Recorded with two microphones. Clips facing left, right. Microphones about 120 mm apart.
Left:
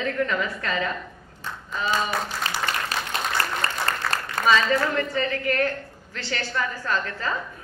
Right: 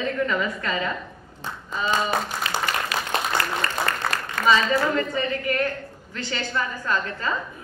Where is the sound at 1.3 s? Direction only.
20° right (ahead or behind).